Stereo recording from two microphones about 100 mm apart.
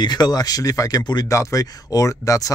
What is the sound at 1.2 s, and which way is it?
Speech, 30° left (ahead or behind).